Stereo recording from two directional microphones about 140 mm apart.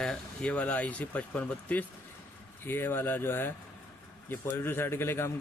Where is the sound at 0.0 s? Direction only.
5° left (ahead or behind).